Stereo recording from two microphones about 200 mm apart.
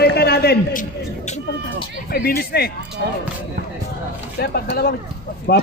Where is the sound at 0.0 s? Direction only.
55° left (ahead or behind).